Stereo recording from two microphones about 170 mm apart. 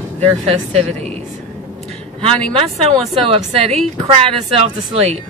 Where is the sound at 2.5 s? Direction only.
35° right (ahead or behind).